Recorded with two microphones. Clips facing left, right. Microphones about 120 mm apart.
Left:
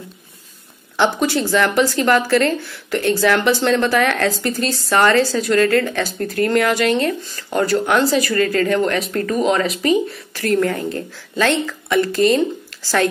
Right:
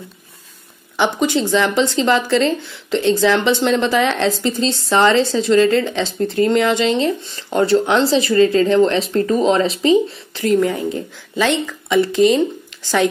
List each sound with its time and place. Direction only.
0.9 s a woman's voice: 15° right (ahead or behind)